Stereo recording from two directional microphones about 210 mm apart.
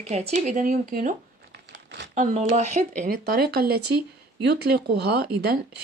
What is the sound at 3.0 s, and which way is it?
Speech, 45° right (ahead or behind).